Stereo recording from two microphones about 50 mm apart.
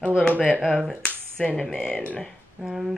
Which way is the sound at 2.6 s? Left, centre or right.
Centre.